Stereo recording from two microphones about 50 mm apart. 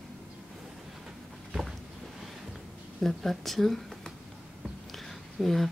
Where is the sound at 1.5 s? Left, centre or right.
Centre.